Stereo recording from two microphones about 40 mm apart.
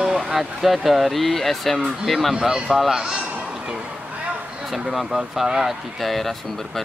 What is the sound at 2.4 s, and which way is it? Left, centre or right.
Speech, centre.